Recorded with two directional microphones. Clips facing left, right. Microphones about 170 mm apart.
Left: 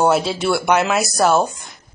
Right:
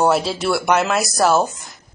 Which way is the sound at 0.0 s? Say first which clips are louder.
Left 1 dB; centre (ahead or behind).